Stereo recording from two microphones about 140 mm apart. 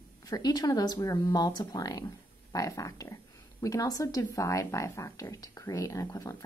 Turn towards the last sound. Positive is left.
turn(degrees=25)  # may be behind; listen again after turning